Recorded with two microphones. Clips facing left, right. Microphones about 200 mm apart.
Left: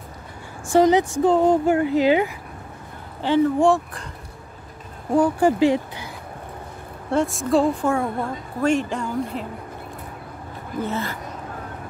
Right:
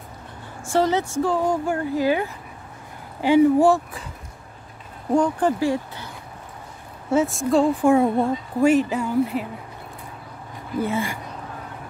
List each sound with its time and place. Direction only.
0.7 s speech: 15° left (ahead or behind)
3.2 s speech: 10° right (ahead or behind)
5.1 s speech: 5° left (ahead or behind)
5.6 s speech: 20° left (ahead or behind)
7.1 s speech: centre (ahead or behind)
7.8 s speech: 20° right (ahead or behind)
8.6 s speech: 5° right (ahead or behind)
10.8 s speech: 10° right (ahead or behind)